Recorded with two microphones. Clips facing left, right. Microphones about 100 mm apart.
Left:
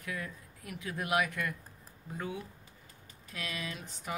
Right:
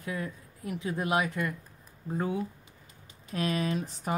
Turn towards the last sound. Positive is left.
turn(degrees=-40)  # may be behind; listen again after turning